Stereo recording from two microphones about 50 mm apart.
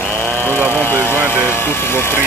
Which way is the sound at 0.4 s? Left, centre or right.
Left.